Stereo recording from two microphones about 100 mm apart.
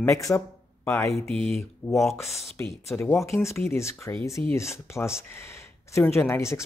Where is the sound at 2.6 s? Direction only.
25° left (ahead or behind).